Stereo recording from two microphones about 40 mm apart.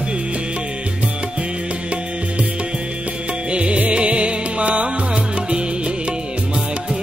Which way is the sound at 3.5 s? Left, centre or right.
Right.